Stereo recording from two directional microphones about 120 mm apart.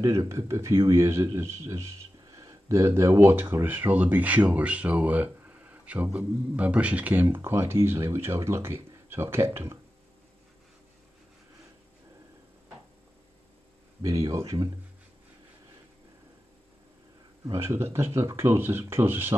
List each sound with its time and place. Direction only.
0.0 s speech: 25° right (ahead or behind)
14.0 s speech: 25° right (ahead or behind)
17.5 s speech: 20° right (ahead or behind)